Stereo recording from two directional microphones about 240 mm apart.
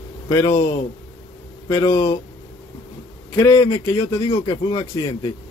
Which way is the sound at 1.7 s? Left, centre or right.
Centre.